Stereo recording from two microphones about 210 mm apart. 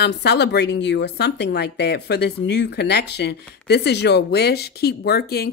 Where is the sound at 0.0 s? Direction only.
50° left (ahead or behind).